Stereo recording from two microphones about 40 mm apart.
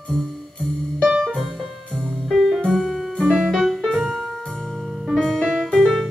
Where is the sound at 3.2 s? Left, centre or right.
Centre.